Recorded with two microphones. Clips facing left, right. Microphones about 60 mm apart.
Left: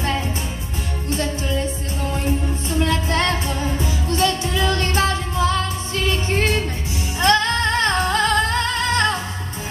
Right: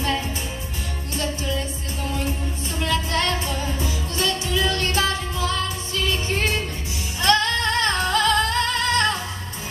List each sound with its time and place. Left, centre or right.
1.1 s music: left
2.8 s music: left